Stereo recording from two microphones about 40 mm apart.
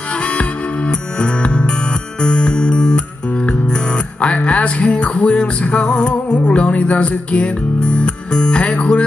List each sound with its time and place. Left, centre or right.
0.4 s music: left